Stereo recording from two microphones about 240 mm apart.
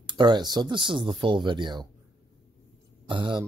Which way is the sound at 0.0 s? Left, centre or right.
Centre.